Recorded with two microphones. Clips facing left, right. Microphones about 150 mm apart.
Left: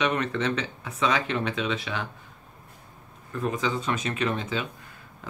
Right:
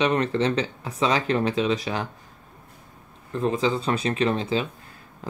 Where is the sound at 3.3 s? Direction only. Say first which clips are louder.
Right 5 dB; 30° right (ahead or behind).